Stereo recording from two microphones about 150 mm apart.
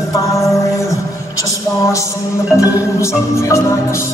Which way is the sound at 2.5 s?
20° left (ahead or behind).